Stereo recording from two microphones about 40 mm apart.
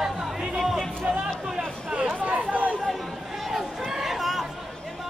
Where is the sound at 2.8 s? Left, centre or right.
Centre.